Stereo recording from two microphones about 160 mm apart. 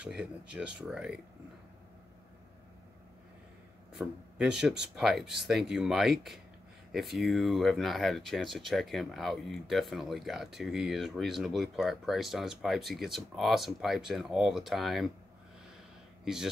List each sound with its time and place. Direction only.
0.0 s speech: 5° right (ahead or behind)
3.9 s speech: centre (ahead or behind)